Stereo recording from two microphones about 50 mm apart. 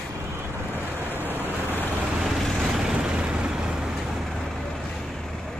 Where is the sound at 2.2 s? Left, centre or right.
Centre.